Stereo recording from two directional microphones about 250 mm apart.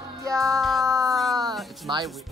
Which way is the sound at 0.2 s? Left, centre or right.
Centre.